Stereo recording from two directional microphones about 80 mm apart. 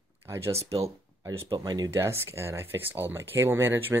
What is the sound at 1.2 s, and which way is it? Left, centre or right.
Speech, right.